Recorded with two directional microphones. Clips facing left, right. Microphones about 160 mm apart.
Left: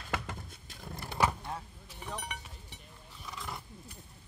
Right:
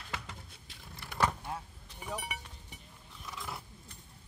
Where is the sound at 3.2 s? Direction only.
Centre (ahead or behind).